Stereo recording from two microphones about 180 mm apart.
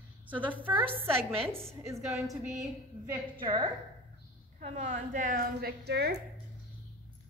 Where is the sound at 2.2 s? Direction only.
Centre (ahead or behind).